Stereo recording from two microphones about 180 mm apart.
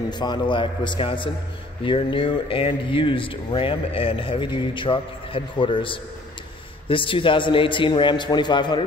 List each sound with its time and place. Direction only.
0.1 s speech: 25° left (ahead or behind)